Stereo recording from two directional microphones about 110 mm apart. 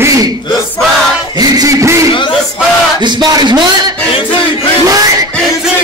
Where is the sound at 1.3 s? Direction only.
35° right (ahead or behind).